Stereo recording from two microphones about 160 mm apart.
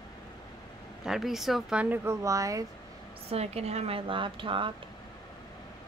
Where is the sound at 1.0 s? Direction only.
5° right (ahead or behind); by 2.7 s 20° right (ahead or behind).